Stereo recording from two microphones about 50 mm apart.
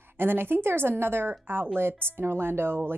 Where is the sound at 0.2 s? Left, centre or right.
Right.